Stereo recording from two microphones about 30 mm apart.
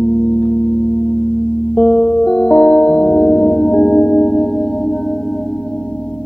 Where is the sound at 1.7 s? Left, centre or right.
Left.